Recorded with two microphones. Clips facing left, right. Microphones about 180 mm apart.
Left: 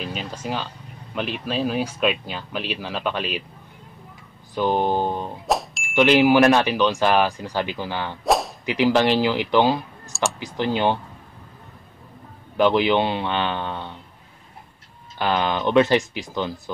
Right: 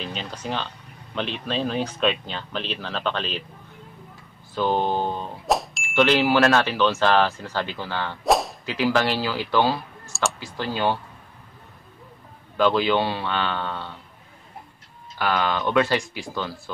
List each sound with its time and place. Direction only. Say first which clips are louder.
0.0 s speech: left 2 dB; 5° left (ahead or behind)
4.6 s speech: left 2 dB; 15° left (ahead or behind)
5.5 s ding: right 1 dB; centre (ahead or behind)
5.9 s speech: left 3 dB; 15° left (ahead or behind)
8.2 s whip: even; centre (ahead or behind)
8.6 s speech: left 4 dB; 15° left (ahead or behind)
12.5 s speech: left 2 dB; 15° left (ahead or behind)
15.1 s speech: left 1 dB; 20° left (ahead or behind)